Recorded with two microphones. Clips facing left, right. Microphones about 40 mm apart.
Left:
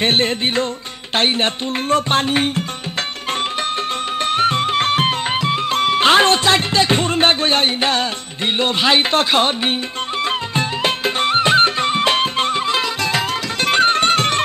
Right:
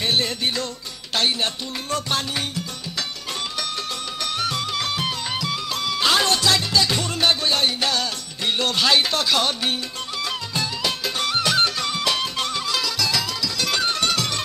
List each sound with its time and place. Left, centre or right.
0.0 s music: left
4.2 s music: left